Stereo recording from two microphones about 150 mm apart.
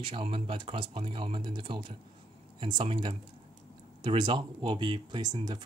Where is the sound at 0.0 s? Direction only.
35° right (ahead or behind).